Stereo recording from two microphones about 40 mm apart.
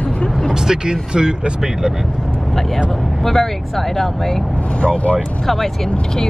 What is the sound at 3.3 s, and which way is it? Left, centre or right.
Speech, centre.